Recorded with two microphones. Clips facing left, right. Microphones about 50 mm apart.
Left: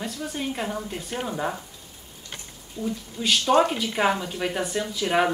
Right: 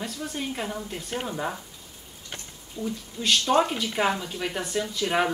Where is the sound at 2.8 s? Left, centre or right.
Centre.